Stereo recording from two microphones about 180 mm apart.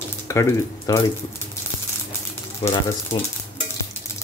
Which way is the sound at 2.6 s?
25° left (ahead or behind).